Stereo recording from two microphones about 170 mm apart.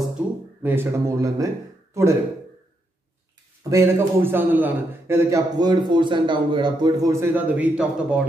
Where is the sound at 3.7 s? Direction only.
15° right (ahead or behind).